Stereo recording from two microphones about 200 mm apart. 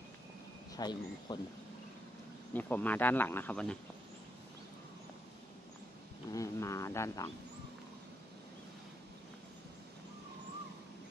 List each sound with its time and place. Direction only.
0.7 s speech: 20° left (ahead or behind)
2.5 s speech: 10° left (ahead or behind)
6.3 s a sound: 15° left (ahead or behind)